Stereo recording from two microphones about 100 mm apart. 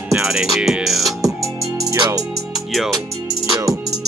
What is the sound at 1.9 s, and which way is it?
Music, 35° right (ahead or behind).